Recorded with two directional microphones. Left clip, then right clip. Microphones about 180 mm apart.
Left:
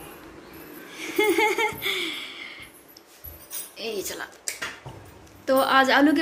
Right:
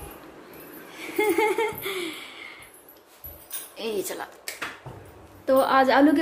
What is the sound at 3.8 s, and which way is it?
Zipper, 25° right (ahead or behind).